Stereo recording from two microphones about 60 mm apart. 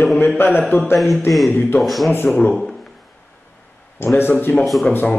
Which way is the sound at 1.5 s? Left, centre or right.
Left.